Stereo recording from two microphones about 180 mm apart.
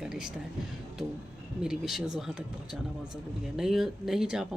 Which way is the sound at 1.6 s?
Centre (ahead or behind).